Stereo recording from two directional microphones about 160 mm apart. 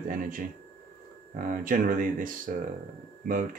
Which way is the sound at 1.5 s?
55° right (ahead or behind).